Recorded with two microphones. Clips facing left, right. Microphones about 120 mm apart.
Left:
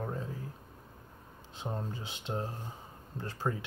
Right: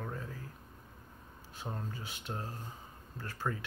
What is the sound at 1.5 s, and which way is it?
Speech, 20° left (ahead or behind).